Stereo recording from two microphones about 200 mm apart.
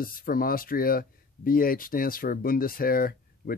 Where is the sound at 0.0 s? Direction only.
45° left (ahead or behind).